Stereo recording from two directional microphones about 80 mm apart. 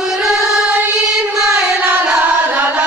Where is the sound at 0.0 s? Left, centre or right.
Centre.